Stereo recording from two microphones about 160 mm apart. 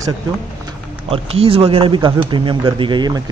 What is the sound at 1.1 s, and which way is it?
Speech, 35° right (ahead or behind).